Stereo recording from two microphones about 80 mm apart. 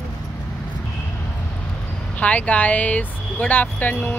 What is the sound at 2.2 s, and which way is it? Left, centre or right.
Speech, centre.